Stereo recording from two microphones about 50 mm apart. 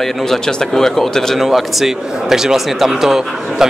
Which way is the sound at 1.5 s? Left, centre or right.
Centre.